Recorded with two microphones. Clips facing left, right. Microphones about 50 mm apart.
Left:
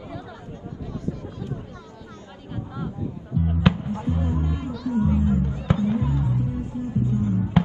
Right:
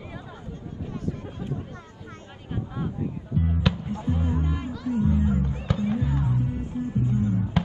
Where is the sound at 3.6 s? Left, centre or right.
Left.